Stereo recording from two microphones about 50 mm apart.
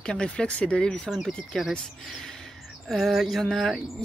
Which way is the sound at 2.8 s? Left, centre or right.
Centre.